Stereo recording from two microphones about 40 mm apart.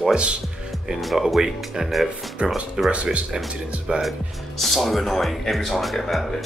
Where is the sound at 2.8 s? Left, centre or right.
Centre.